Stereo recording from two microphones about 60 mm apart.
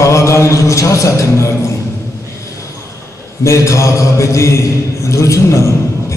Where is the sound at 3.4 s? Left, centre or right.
Left.